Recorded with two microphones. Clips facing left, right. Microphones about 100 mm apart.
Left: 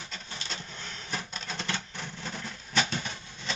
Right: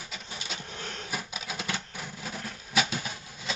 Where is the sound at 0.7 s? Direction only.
50° right (ahead or behind).